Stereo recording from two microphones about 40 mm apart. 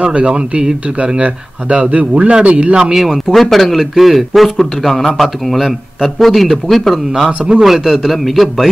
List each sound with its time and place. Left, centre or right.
0.0 s speech: right
1.2 s speech: right
2.7 s speech: right
3.0 s speech: centre
7.2 s speech: right
7.6 s a man's voice: centre